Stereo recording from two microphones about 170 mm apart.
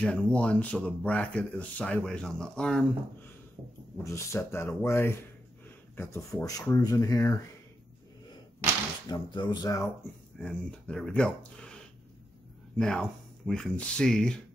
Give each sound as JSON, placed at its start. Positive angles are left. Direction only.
{"t": 0.0, "sound": "speech", "side_deg": 5}
{"t": 4.0, "sound": "speech", "side_deg": 15}
{"t": 9.1, "sound": "music", "side_deg": 25}
{"t": 10.4, "sound": "speech", "side_deg": 5}